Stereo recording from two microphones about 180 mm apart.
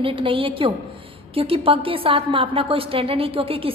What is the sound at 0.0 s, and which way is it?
A woman's voice, 30° right (ahead or behind).